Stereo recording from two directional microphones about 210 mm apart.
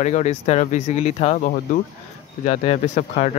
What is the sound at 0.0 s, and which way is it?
Speech, 35° left (ahead or behind).